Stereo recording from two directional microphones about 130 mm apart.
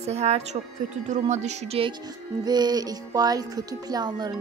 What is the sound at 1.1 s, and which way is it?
Speech, 65° right (ahead or behind).